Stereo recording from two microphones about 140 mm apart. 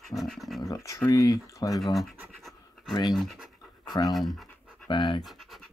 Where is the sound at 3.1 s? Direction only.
Centre (ahead or behind).